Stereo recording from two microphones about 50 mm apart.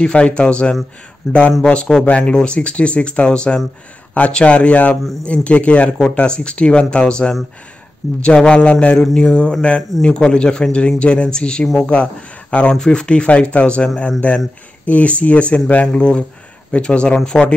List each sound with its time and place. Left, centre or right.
0.0 s speech: left
1.2 s speech: centre
2.0 s speech: left
9.0 s a sound: centre
10.0 s speech: centre
12.7 s speech: centre